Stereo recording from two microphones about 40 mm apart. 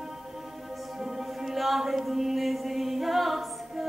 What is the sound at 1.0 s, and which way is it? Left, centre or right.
Music, centre.